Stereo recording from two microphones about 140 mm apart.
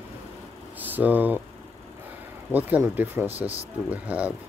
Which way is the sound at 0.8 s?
10° right (ahead or behind).